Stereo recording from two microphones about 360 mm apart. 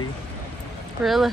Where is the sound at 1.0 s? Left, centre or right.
Centre.